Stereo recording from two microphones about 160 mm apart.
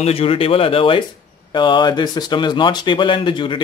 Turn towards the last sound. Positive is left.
turn(degrees=30)  # may be behind; listen again after turning